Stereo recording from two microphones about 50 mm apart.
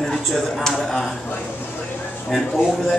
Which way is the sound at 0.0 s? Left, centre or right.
Centre.